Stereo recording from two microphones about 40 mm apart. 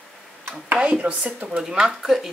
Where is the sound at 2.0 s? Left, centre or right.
Centre.